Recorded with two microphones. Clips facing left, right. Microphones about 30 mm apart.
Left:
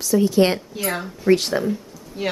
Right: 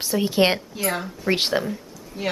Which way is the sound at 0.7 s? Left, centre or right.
Centre.